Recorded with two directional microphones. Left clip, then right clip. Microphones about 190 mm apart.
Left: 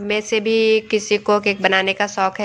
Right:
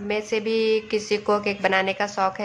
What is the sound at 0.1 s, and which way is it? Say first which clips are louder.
Speech: left 6 dB; 20° left (ahead or behind).